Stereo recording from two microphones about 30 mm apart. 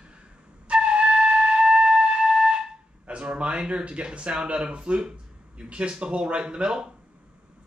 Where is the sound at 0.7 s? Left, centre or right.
Right.